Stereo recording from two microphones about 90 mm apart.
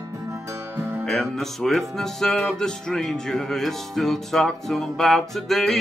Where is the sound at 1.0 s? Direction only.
5° left (ahead or behind).